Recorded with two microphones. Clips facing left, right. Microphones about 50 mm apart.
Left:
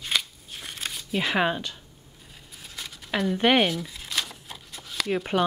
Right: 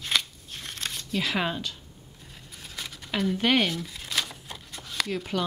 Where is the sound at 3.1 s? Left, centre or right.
Centre.